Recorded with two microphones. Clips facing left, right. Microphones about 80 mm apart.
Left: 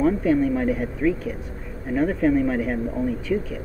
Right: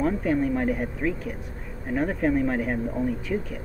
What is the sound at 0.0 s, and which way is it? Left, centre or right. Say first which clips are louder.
Speech: left 4 dB; centre.